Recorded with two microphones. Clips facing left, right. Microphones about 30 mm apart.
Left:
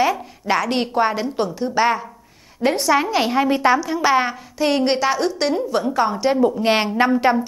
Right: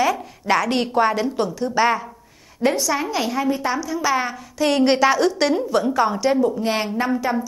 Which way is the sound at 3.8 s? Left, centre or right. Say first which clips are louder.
Left 3 dB; left.